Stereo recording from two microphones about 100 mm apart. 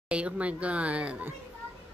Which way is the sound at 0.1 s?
10° right (ahead or behind).